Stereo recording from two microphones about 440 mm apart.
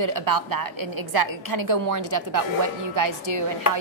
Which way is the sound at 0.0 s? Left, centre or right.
Right.